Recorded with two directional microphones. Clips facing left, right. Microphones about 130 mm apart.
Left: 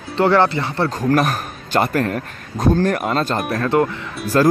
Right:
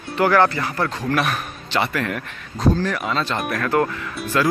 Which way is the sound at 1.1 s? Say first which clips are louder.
Left 4 dB; 40° left (ahead or behind).